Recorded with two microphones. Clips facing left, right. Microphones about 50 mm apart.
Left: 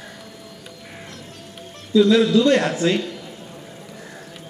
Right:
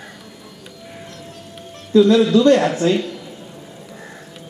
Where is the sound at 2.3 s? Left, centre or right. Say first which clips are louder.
Right 3 dB; right.